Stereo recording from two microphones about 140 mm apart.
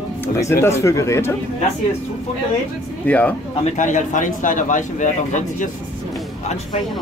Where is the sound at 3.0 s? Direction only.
10° left (ahead or behind).